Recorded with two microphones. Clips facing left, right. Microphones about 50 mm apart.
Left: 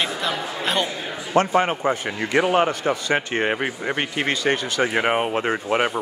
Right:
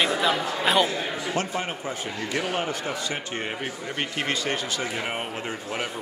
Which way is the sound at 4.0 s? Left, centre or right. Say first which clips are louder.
Left 2 dB; left.